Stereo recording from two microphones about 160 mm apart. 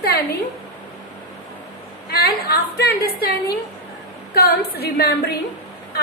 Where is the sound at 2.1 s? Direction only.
75° left (ahead or behind).